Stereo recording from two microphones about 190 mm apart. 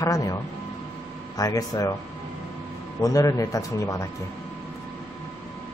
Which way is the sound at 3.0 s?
20° left (ahead or behind).